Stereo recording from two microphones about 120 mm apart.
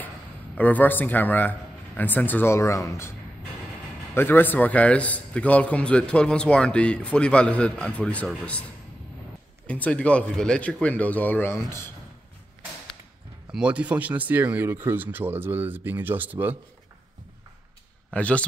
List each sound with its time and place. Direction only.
0.6 s a man's voice: 15° left (ahead or behind)
9.7 s a man's voice: 10° left (ahead or behind)
13.5 s speech: 10° right (ahead or behind)
18.1 s a man's voice: 10° left (ahead or behind)